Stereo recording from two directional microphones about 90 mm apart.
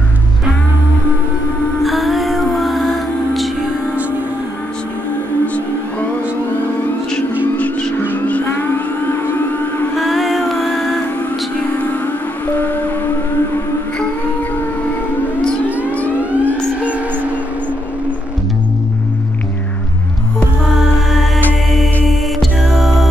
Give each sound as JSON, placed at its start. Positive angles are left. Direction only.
{"t": 1.8, "sound": "music", "side_deg": 0}
{"t": 7.5, "sound": "music", "side_deg": 15}
{"t": 9.9, "sound": "child singing", "side_deg": 0}
{"t": 12.5, "sound": "a sound", "side_deg": 20}
{"t": 16.2, "sound": "music", "side_deg": -15}
{"t": 22.0, "sound": "music", "side_deg": 0}